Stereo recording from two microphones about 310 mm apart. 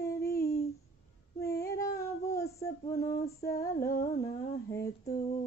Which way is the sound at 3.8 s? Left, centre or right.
Left.